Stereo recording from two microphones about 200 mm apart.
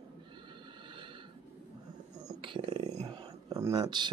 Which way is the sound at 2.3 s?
25° right (ahead or behind).